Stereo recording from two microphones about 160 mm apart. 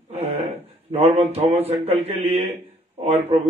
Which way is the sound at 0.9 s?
40° right (ahead or behind).